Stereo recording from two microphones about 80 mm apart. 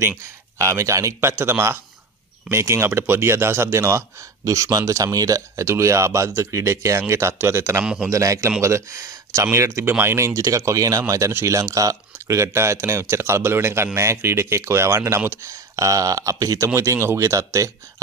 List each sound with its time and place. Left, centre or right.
0.2 s speech: right
4.5 s speech: right
7.8 s speech: centre
8.1 s speech: right